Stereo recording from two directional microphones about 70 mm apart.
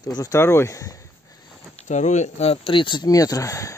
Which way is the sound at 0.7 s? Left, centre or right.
Left.